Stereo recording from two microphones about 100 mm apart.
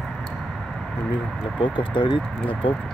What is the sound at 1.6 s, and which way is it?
Speech, 55° left (ahead or behind).